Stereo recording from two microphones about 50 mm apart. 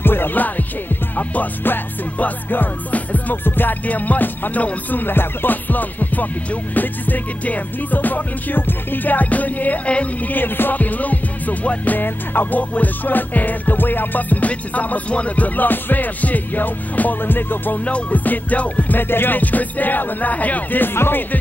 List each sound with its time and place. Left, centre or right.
0.0 s music: left
5.0 s music: left
10.3 s music: left
17.8 s music: left